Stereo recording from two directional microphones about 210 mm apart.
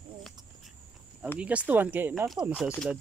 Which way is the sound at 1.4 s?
5° right (ahead or behind).